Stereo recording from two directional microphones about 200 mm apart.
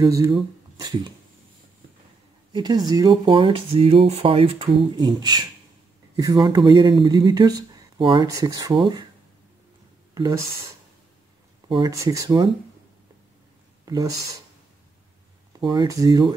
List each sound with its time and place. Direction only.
0.0 s speech: 20° right (ahead or behind)
2.5 s speech: 20° right (ahead or behind)
10.1 s speech: 20° right (ahead or behind)
11.7 s speech: 20° right (ahead or behind)
15.6 s speech: 20° right (ahead or behind)